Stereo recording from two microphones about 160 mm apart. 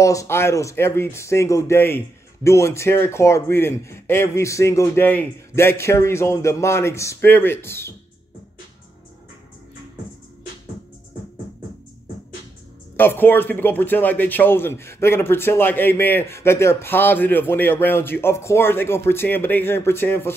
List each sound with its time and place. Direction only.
0.0 s speech: 20° left (ahead or behind)
12.9 s speech: 15° left (ahead or behind)